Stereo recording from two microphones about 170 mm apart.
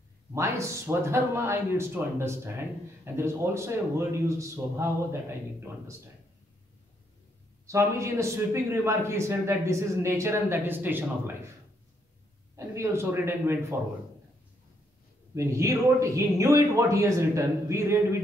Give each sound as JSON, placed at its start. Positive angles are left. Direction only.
{"t": 0.3, "sound": "a man's voice", "side_deg": -15}
{"t": 7.6, "sound": "a man's voice", "side_deg": -15}
{"t": 12.5, "sound": "a man's voice", "side_deg": -15}
{"t": 15.3, "sound": "a man's voice", "side_deg": -20}